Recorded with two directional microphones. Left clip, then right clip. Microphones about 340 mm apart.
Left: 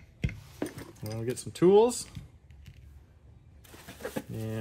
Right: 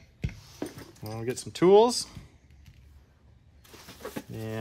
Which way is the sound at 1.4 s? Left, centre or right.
Centre.